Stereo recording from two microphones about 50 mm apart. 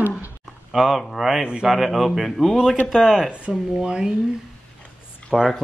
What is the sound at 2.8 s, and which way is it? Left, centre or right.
Speech, centre.